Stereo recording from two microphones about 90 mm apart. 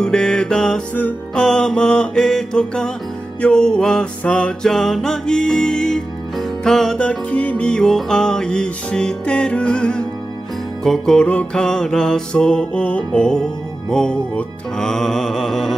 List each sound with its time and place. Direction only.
0.0 s music: 10° left (ahead or behind)
1.4 s mantra: 10° left (ahead or behind)
3.3 s music: 10° left (ahead or behind)